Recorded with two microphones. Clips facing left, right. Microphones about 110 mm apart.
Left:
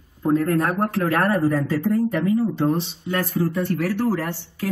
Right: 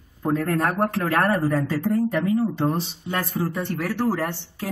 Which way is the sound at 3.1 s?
30° right (ahead or behind).